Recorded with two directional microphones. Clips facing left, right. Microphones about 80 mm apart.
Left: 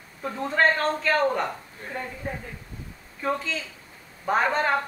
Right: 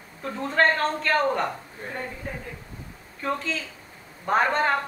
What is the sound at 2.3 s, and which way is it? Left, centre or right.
Speech, centre.